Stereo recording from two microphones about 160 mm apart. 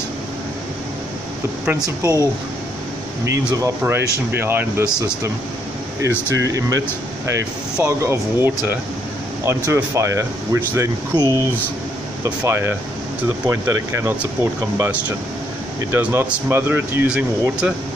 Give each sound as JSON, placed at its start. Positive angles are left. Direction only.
{"t": 1.7, "sound": "speech", "side_deg": -20}
{"t": 3.5, "sound": "speech", "side_deg": -20}
{"t": 6.4, "sound": "speech", "side_deg": -20}
{"t": 7.8, "sound": "speech", "side_deg": -15}